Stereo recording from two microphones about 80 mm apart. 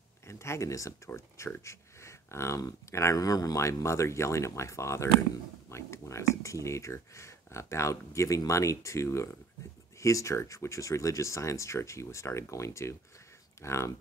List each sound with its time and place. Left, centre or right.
0.3 s speech: left